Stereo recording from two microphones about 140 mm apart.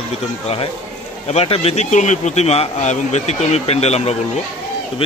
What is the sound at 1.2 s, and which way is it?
Speech, 50° left (ahead or behind).